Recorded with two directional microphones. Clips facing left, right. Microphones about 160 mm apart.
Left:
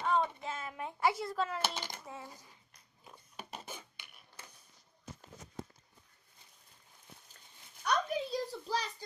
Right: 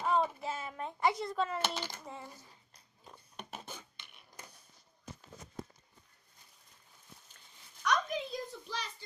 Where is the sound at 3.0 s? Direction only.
5° left (ahead or behind).